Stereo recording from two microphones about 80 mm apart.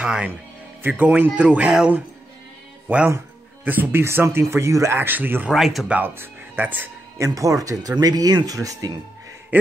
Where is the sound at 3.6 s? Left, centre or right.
Right.